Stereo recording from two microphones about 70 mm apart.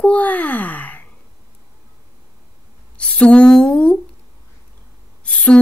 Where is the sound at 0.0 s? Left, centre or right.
Left.